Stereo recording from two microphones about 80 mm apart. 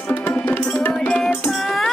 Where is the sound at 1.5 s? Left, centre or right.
Centre.